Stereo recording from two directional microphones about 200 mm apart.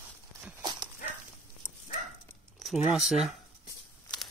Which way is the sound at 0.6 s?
20° right (ahead or behind).